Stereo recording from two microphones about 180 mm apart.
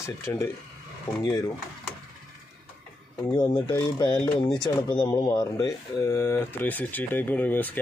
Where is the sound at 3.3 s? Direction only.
25° left (ahead or behind).